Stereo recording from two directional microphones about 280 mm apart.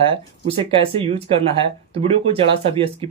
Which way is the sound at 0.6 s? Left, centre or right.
Right.